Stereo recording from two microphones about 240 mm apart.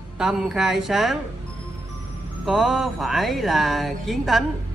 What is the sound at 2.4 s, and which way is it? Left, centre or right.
Speech, centre.